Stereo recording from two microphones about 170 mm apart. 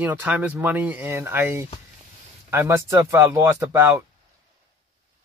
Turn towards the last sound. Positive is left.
turn(degrees=-15)  # may be behind; listen again after turning